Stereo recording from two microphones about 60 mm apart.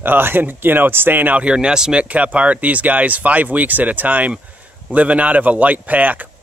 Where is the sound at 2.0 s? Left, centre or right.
Right.